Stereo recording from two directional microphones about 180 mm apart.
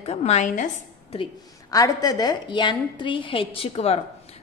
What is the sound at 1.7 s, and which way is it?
A woman's voice, 20° left (ahead or behind).